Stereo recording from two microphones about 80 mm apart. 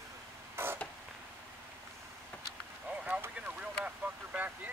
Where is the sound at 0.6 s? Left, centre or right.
Right.